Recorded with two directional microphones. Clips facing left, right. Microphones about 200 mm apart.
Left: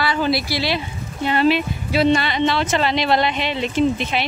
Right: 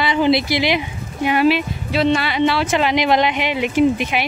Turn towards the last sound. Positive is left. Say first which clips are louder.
# right 3 dB
turn(degrees=-15)  # may be behind; listen again after turning